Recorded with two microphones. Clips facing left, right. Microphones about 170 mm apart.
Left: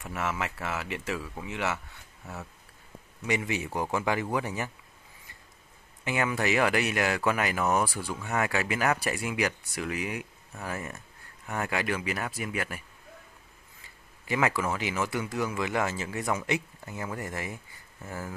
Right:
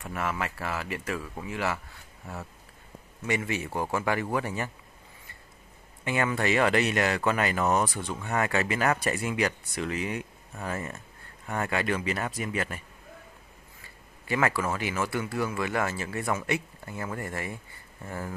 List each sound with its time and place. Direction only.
0.7 s speech: 20° left (ahead or behind)
1.0 s speech: 5° left (ahead or behind)
1.4 s speech: 20° left (ahead or behind)
3.3 s speech: 15° left (ahead or behind)
6.0 s speech: 15° left (ahead or behind)
14.2 s speech: 15° left (ahead or behind)